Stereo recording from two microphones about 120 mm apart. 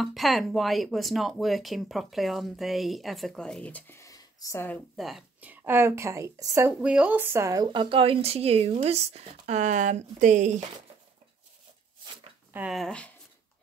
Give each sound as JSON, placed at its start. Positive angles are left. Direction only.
{"t": 0.0, "sound": "speech", "side_deg": 0}
{"t": 4.9, "sound": "speech", "side_deg": 0}
{"t": 5.4, "sound": "a woman's voice", "side_deg": -15}
{"t": 6.7, "sound": "speech", "side_deg": -10}
{"t": 12.5, "sound": "speech", "side_deg": -5}
{"t": 12.8, "sound": "speech", "side_deg": 10}